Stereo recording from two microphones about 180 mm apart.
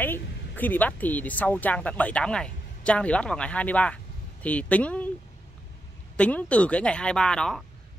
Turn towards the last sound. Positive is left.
turn(degrees=5)  # may be behind; listen again after turning